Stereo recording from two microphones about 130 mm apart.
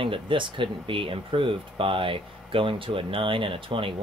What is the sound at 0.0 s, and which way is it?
Speech, 40° right (ahead or behind).